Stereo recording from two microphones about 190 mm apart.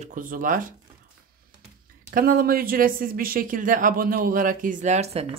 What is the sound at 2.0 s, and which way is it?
Speech, 50° right (ahead or behind).